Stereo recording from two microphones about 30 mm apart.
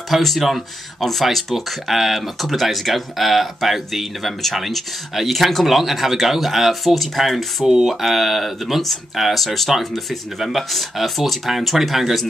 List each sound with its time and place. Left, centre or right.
0.1 s speech: centre